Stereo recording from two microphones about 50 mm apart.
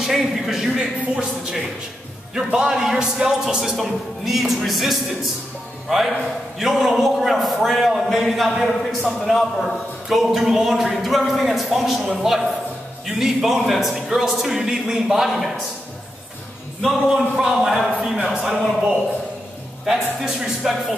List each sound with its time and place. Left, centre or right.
0.0 s a sound: centre
0.7 s a man's voice: centre
10.0 s a man's voice: centre
16.8 s a man's voice: centre
20.2 s a man's voice: centre